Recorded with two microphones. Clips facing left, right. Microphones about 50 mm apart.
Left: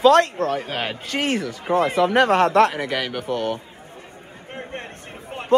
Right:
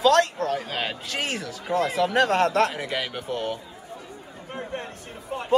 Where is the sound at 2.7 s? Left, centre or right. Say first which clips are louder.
Left 4 dB; left.